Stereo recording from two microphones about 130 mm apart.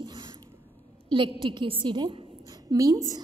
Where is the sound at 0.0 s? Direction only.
35° right (ahead or behind).